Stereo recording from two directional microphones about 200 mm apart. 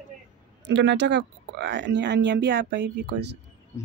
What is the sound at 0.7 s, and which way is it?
Speech, 60° right (ahead or behind).